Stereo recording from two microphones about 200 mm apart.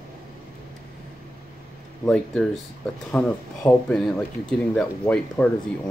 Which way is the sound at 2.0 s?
5° left (ahead or behind).